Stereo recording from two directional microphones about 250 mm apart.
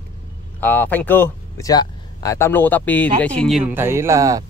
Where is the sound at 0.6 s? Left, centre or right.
Centre.